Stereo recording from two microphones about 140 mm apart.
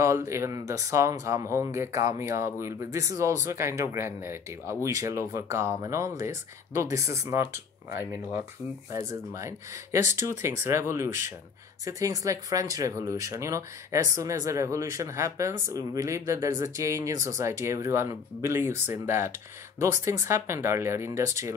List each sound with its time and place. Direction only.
0.0 s speech: 20° right (ahead or behind)